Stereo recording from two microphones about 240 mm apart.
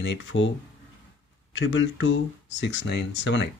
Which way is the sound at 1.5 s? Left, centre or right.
Left.